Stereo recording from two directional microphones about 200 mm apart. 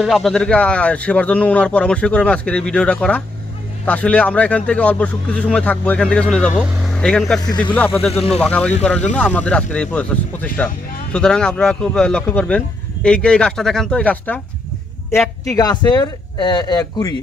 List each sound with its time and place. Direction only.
0.0 s speech: centre (ahead or behind)
7.4 s speech: 20° left (ahead or behind)
8.4 s speech: 5° left (ahead or behind)